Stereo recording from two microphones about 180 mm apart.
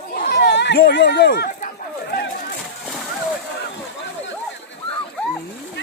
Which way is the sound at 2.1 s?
60° left (ahead or behind).